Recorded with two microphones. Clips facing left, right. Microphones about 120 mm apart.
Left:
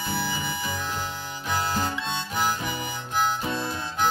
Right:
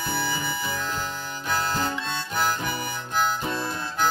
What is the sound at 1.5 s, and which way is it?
Harmonica, 15° left (ahead or behind).